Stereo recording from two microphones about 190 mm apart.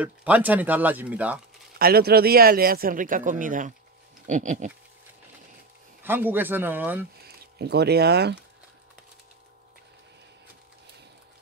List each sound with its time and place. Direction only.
0.0 s speech: 10° right (ahead or behind)
1.8 s a man's voice: 55° right (ahead or behind)
6.0 s speech: 10° right (ahead or behind)
7.2 s speech: 55° right (ahead or behind)